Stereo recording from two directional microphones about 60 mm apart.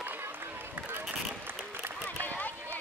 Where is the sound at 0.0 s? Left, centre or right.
Right.